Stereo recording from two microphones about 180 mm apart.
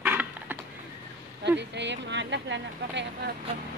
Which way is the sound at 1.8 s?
80° right.